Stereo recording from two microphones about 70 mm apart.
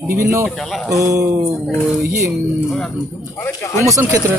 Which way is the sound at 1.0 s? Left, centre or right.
Right.